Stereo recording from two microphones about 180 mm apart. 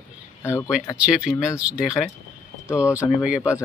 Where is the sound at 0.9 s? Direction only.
5° right (ahead or behind).